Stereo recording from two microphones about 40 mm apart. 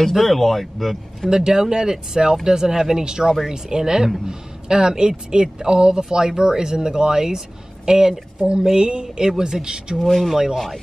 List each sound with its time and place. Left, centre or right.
0.1 s speech: centre
1.3 s speech: centre
8.4 s a sound: right
9.4 s speech: centre
9.9 s speech: centre
10.3 s speech: centre